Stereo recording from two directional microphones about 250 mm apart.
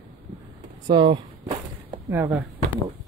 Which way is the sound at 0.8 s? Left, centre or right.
Centre.